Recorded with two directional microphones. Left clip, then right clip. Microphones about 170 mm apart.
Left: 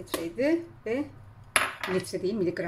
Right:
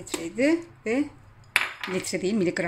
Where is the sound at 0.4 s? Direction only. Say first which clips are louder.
Right 4 dB; 35° right (ahead or behind).